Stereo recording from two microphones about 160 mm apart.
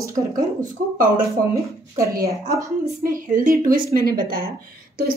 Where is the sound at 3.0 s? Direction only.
60° right (ahead or behind).